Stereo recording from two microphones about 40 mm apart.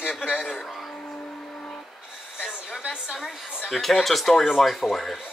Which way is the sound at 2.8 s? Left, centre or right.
Right.